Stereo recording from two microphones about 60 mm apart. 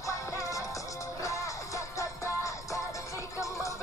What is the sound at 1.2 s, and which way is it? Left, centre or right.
Music, left.